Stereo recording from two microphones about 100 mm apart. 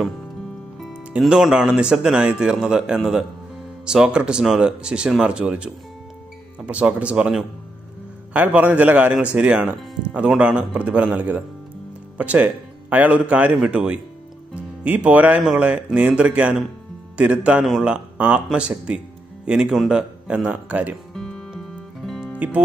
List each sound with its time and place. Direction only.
1.2 s speech: 5° right (ahead or behind)
21.1 s music: 5° left (ahead or behind)